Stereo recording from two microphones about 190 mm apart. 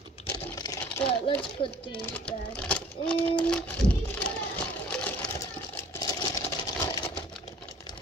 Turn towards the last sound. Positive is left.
turn(degrees=20)  # may be behind; listen again after turning